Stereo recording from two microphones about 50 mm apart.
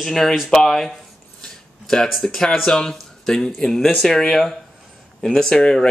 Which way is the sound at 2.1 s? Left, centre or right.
Centre.